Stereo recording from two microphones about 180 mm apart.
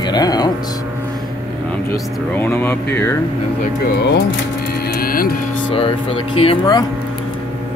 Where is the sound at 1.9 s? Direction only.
10° left (ahead or behind).